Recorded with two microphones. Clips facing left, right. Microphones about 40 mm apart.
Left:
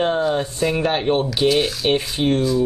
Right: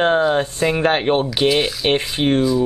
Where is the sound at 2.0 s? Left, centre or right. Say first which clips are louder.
Right 2 dB; right.